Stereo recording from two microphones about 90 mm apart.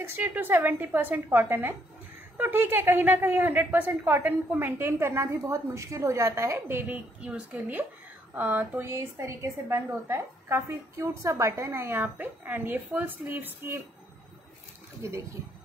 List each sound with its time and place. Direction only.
0.0 s a woman's voice: 25° right (ahead or behind)
6.9 s a woman's voice: 10° right (ahead or behind); by 12.0 s 30° right (ahead or behind)
12.0 s a woman's voice: 20° right (ahead or behind)
15.0 s a woman's voice: 30° right (ahead or behind)